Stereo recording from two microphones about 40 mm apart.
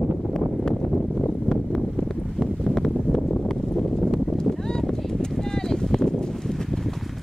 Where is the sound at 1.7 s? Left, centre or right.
Centre.